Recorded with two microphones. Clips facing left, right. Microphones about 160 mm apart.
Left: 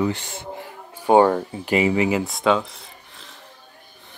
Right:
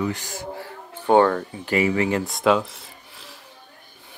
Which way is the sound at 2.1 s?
Centre (ahead or behind).